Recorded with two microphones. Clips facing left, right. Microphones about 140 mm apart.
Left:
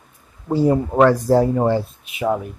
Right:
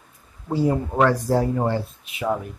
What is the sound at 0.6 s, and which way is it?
Speech, 30° left (ahead or behind).